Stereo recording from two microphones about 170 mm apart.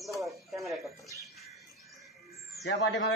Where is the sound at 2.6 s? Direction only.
90° left.